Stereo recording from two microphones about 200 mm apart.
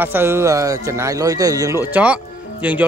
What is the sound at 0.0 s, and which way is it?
Speech, 10° right (ahead or behind).